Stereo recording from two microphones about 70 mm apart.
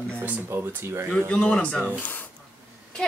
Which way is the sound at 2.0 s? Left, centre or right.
Left.